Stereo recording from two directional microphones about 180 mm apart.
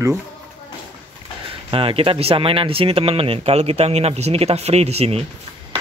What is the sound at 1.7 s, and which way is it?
Speech, 30° right (ahead or behind).